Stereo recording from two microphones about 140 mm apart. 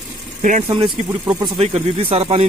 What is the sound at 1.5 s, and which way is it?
Speech, 45° right (ahead or behind).